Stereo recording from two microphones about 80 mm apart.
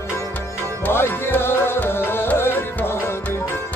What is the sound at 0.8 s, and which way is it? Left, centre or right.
Music, left.